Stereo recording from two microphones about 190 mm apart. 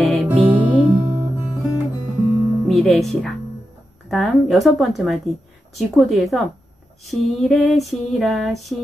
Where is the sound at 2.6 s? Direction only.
Centre (ahead or behind).